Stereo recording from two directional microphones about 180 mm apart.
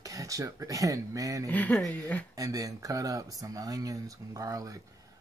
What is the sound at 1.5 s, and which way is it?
Speech, 10° left (ahead or behind).